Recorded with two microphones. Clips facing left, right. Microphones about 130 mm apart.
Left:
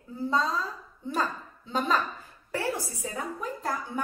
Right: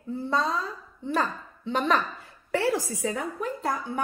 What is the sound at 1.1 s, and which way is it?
Speech, 65° right (ahead or behind).